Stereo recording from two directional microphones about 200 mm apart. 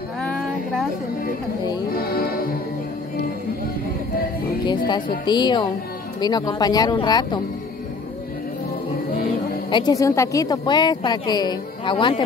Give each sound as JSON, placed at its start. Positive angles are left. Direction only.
{"t": 2.0, "sound": "music", "side_deg": 45}
{"t": 4.6, "sound": "a woman's voice", "side_deg": 20}
{"t": 9.7, "sound": "a woman's voice", "side_deg": 20}